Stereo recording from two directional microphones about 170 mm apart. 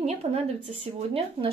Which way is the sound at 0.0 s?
40° right (ahead or behind).